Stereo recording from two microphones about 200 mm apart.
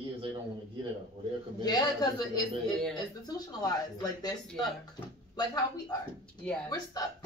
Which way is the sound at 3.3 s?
20° left (ahead or behind).